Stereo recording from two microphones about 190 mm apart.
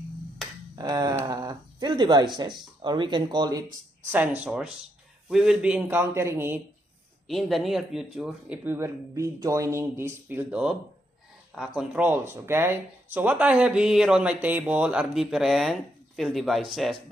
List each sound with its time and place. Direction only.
0.7 s speech: 20° right (ahead or behind)
4.0 s speech: 10° right (ahead or behind)
7.2 s speech: centre (ahead or behind)